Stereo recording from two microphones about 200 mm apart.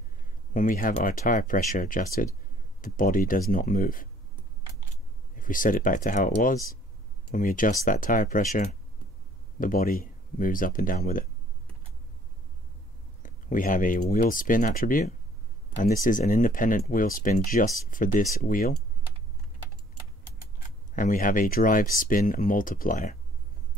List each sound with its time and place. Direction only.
0.5 s speech: 40° left (ahead or behind)
5.3 s speech: 40° left (ahead or behind)
13.2 s speech: 40° left (ahead or behind)
20.9 s speech: 40° left (ahead or behind)